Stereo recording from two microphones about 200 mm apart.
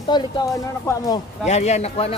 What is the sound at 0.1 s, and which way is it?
Speech, 20° left (ahead or behind).